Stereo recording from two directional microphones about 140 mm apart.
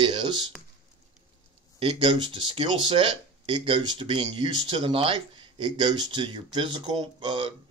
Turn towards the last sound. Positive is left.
turn(degrees=-35)  # may be behind; listen again after turning